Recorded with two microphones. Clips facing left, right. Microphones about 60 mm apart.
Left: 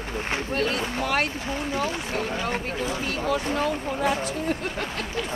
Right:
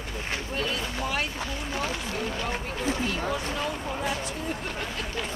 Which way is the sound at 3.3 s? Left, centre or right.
Left.